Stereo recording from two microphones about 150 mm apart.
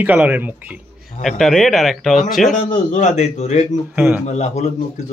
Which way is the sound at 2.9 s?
50° left (ahead or behind).